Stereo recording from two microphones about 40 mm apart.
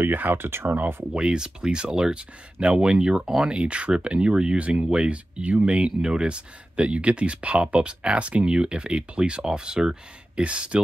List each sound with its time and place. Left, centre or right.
0.0 s speech: right
0.7 s speech: right
1.1 s speech: right